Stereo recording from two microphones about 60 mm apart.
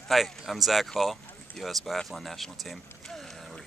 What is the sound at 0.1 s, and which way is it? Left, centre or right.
Speech, centre.